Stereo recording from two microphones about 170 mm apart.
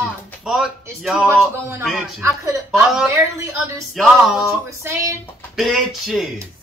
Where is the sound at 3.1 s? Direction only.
15° right (ahead or behind).